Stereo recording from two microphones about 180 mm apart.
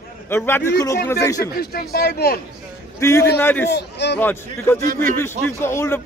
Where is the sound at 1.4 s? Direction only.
60° left (ahead or behind).